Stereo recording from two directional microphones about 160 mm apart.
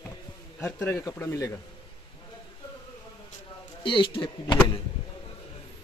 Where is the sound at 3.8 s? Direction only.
30° left (ahead or behind).